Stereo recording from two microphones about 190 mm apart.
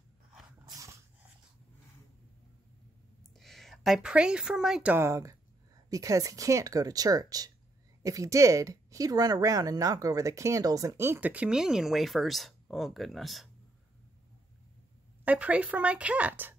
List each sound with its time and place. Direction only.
0.7 s dog: 15° right (ahead or behind)
3.3 s a woman's voice: centre (ahead or behind)
15.2 s speech: 5° right (ahead or behind)